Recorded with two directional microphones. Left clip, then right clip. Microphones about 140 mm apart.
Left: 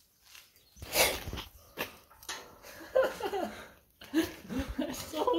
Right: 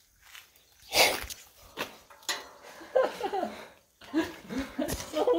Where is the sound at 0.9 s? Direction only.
10° right (ahead or behind).